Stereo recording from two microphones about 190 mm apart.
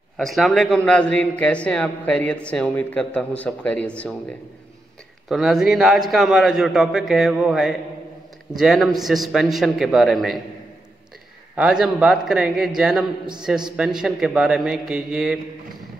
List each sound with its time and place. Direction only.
0.2 s a man's voice: centre (ahead or behind)
5.3 s a man's voice: centre (ahead or behind)
11.5 s a man's voice: 5° right (ahead or behind)